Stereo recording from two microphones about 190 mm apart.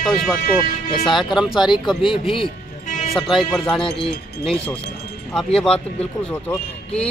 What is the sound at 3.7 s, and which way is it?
Speech, 30° left (ahead or behind).